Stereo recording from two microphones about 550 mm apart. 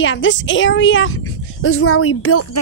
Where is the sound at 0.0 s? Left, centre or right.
Centre.